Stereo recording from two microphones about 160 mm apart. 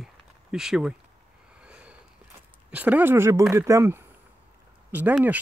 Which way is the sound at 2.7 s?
10° right (ahead or behind).